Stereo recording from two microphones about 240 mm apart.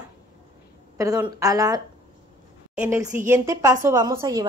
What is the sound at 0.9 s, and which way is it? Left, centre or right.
A woman's voice, centre.